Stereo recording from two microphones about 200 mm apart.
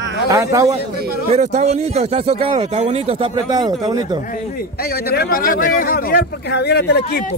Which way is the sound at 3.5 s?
20° right (ahead or behind).